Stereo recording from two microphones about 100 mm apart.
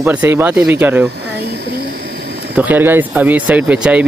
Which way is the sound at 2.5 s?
15° right (ahead or behind).